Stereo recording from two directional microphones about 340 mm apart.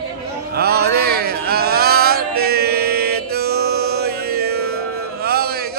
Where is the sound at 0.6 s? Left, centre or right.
Right.